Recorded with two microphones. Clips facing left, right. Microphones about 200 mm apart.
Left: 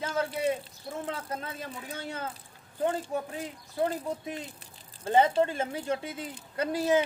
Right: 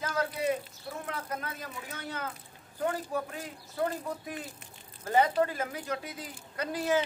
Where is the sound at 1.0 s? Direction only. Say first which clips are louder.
Left 1 dB; 30° left (ahead or behind).